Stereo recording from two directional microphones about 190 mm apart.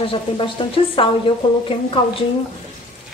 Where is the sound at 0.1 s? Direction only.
25° left (ahead or behind).